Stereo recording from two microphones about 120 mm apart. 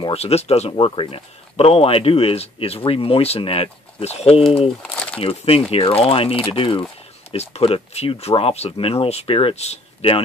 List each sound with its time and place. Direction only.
0.0 s speech: 60° left (ahead or behind)
7.2 s speech: 60° left (ahead or behind)